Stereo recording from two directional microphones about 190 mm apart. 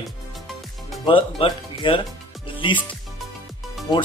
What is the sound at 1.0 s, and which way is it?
Speech, 25° left (ahead or behind).